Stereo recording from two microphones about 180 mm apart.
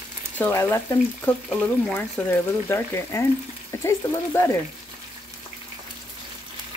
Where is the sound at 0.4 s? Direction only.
15° left (ahead or behind).